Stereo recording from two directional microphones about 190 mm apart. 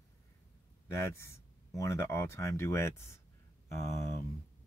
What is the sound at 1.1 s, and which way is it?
Speech, 15° left (ahead or behind).